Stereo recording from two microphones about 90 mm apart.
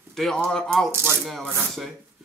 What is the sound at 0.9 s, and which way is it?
Rub, 30° right (ahead or behind).